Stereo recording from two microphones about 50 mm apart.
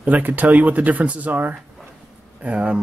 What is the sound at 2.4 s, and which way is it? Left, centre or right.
Speech, right.